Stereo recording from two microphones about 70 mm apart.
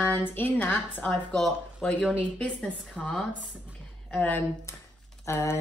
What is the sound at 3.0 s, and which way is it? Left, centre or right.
Speech, centre.